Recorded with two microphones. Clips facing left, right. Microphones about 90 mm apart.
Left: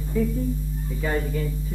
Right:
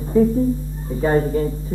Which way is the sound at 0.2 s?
35° right (ahead or behind).